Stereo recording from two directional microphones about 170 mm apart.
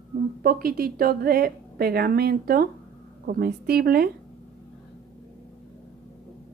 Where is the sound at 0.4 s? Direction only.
60° right (ahead or behind).